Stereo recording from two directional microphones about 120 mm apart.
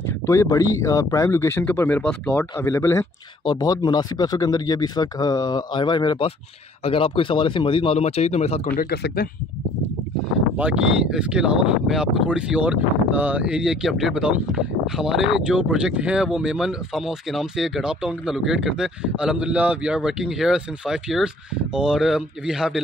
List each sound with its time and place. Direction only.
0.0 s speech: 25° left (ahead or behind)
3.4 s speech: 35° left (ahead or behind); by 8.6 s 60° left (ahead or behind)
10.5 s speech: 10° right (ahead or behind)